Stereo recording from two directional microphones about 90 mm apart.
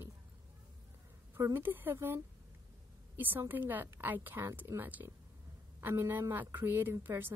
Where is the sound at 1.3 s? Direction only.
25° right (ahead or behind).